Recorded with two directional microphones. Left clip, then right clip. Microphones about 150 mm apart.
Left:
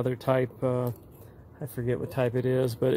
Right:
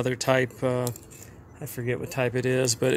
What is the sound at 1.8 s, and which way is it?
Speech, 30° left (ahead or behind).